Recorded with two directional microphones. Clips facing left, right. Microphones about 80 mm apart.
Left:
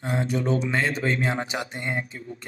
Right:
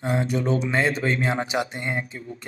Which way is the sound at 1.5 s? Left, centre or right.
Centre.